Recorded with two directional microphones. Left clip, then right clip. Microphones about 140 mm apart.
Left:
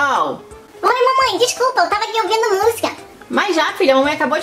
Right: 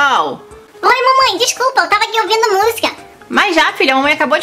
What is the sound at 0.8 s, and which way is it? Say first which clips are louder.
A woman's voice: right 4 dB; 25° right (ahead or behind).